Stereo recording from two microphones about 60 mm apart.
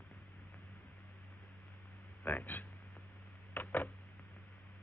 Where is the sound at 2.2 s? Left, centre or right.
Left.